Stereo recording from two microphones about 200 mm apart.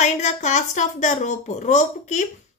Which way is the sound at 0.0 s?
35° left (ahead or behind).